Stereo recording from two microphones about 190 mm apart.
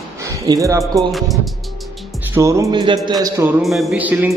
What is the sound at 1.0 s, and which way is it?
Music, centre (ahead or behind).